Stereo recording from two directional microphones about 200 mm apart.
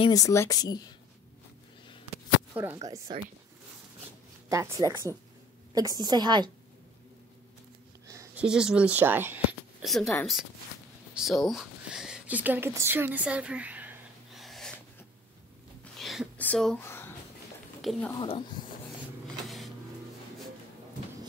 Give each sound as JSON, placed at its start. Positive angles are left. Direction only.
{"t": 0.0, "sound": "speech", "side_deg": 15}
{"t": 2.5, "sound": "speech", "side_deg": -10}
{"t": 4.5, "sound": "a woman's voice", "side_deg": -15}
{"t": 8.1, "sound": "a sound", "side_deg": -15}
{"t": 8.5, "sound": "speech", "side_deg": -5}
{"t": 11.1, "sound": "a sound", "side_deg": 0}
{"t": 15.8, "sound": "a sound", "side_deg": 0}
{"t": 18.1, "sound": "speech", "side_deg": 25}
{"t": 19.4, "sound": "printer", "side_deg": 0}